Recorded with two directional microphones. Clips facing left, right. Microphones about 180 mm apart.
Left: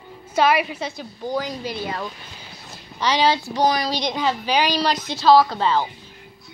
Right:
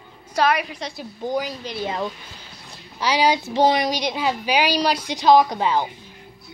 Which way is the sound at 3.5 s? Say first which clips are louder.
Right 2 dB; 25° right (ahead or behind).